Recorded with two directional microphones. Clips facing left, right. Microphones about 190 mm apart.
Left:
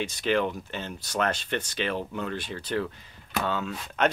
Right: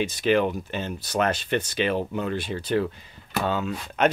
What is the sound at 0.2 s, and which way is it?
Speech, 10° right (ahead or behind).